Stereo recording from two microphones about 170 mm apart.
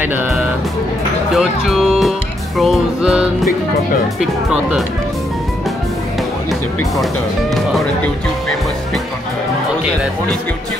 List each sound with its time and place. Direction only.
0.0 s music: 10° right (ahead or behind)
1.3 s speech: centre (ahead or behind)